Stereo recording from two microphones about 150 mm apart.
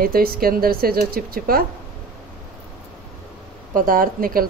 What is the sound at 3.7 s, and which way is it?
Speech, 65° right (ahead or behind).